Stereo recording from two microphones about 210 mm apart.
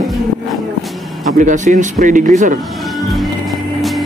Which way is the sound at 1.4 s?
35° right (ahead or behind).